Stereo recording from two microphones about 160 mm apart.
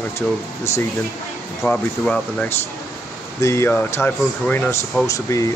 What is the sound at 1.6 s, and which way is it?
Speech, 10° left (ahead or behind).